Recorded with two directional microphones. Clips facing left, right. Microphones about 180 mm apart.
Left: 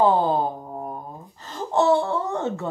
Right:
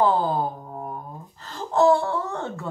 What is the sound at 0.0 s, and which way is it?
Speech, 20° left (ahead or behind).